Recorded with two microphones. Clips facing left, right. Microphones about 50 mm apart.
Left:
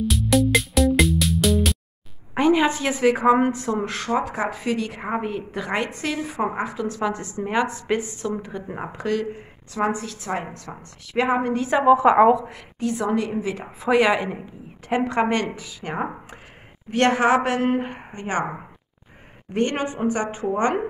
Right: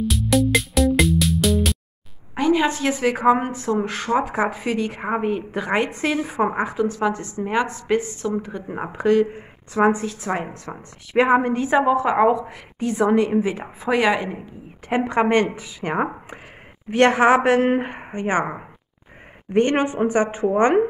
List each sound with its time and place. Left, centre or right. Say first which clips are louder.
0.0 s music: even; centre
2.5 s a woman's voice: right 1 dB; centre
6.9 s a woman's voice: right 3 dB; centre
8.7 s a woman's voice: right 8 dB; centre
11.8 s a woman's voice: left 5 dB; centre
12.8 s a woman's voice: right 5 dB; right
13.7 s a woman's voice: left 1 dB; centre
14.9 s a woman's voice: right 2 dB; centre
19.5 s a woman's voice: right 5 dB; right